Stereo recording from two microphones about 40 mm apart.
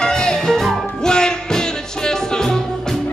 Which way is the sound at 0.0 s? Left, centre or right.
Centre.